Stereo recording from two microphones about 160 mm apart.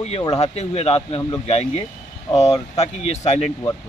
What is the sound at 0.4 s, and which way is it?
Speech, 40° left (ahead or behind).